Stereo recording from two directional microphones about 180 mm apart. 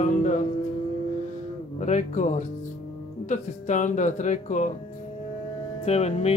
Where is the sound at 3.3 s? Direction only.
40° left (ahead or behind).